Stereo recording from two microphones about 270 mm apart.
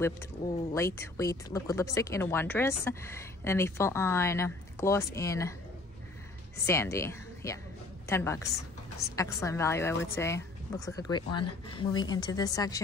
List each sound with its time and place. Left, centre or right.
0.7 s speech: centre
6.6 s speech: centre